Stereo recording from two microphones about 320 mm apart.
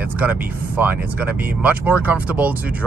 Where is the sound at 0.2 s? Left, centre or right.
Centre.